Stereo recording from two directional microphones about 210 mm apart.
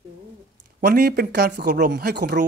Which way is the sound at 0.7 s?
45° right (ahead or behind).